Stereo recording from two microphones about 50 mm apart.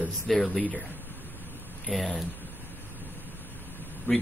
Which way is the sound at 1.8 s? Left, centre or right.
Centre.